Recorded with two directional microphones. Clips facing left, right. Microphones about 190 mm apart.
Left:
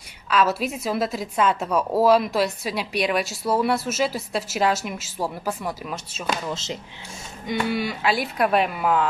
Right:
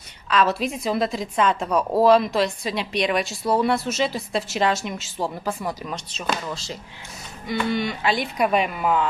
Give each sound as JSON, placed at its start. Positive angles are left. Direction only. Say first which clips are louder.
{"t": 0.3, "sound": "a woman's voice", "louder": "even", "side_deg": 5}
{"t": 6.5, "sound": "speech", "louder": "left 2 dB", "side_deg": 20}
{"t": 7.4, "sound": "a woman's voice", "louder": "right 1 dB", "side_deg": 10}